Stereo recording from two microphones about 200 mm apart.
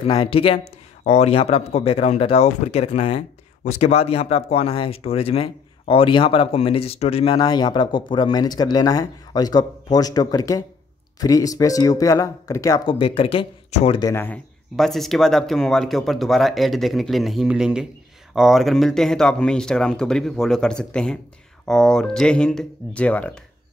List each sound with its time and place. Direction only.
0.0 s speech: 25° left (ahead or behind)
14.1 s speech: 10° left (ahead or behind)